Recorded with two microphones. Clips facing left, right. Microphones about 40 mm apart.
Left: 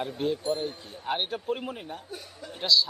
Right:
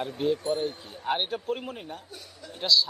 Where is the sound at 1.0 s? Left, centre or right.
Centre.